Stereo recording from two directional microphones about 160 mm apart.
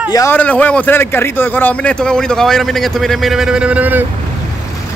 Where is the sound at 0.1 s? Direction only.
20° left (ahead or behind).